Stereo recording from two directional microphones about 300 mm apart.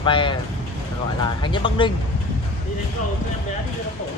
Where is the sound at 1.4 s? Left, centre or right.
Centre.